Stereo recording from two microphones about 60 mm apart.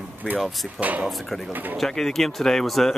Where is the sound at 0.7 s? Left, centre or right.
Right.